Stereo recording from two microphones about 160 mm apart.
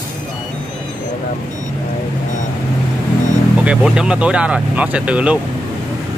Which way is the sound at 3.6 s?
5° right (ahead or behind).